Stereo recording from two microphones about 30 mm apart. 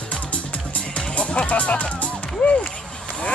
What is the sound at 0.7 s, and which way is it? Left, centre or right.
Music, left.